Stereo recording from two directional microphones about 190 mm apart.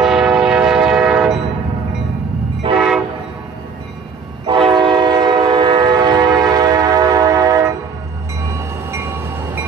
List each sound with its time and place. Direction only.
0.0 s train: centre (ahead or behind)
2.6 s train: 25° right (ahead or behind)
4.5 s train: 25° right (ahead or behind)